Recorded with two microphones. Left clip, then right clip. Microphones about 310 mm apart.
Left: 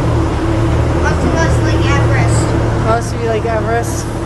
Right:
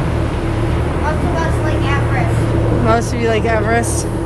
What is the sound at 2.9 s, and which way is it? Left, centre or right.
Vehicle, right.